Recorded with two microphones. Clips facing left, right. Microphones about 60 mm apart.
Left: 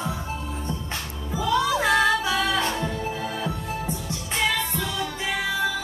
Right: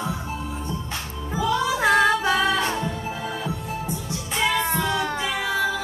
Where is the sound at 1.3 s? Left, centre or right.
Right.